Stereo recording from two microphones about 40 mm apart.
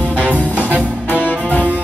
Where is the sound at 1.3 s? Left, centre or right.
Left.